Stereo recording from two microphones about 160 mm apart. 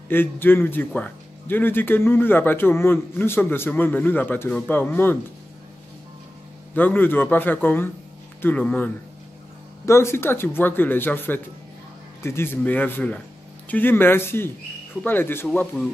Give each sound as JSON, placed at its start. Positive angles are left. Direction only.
{"t": 0.1, "sound": "speech", "side_deg": 15}
{"t": 6.7, "sound": "speech", "side_deg": 10}